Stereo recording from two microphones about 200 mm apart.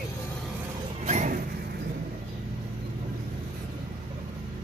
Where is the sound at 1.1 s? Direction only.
35° right (ahead or behind).